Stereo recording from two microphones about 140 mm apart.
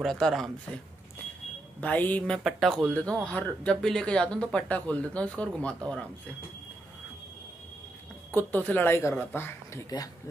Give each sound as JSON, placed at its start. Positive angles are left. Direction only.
{"t": 0.0, "sound": "speech", "side_deg": 0}
{"t": 1.8, "sound": "speech", "side_deg": 10}
{"t": 8.4, "sound": "speech", "side_deg": 15}
{"t": 9.9, "sound": "speech", "side_deg": 30}